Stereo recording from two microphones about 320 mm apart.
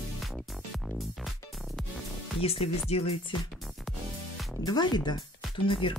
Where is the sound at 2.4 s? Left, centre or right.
Centre.